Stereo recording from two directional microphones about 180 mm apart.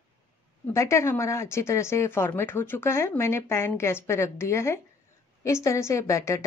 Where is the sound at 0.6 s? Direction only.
15° left (ahead or behind).